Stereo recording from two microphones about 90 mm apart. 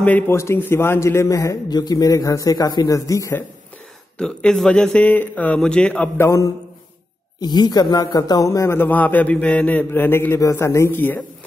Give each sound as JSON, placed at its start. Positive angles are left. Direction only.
{"t": 0.3, "sound": "a man's voice", "side_deg": 30}
{"t": 1.7, "sound": "speech", "side_deg": 50}
{"t": 4.2, "sound": "speech", "side_deg": 10}
{"t": 6.1, "sound": "a man's voice", "side_deg": 35}
{"t": 7.3, "sound": "a man's voice", "side_deg": 50}